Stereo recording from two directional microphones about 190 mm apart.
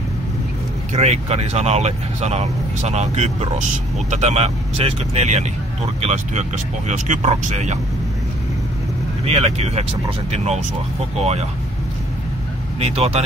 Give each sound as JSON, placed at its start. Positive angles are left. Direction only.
{"t": 0.9, "sound": "speech", "side_deg": -35}
{"t": 9.2, "sound": "speech", "side_deg": -30}
{"t": 12.8, "sound": "speech", "side_deg": -30}